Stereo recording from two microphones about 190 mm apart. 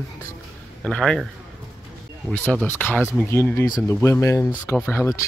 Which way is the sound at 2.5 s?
10° left (ahead or behind).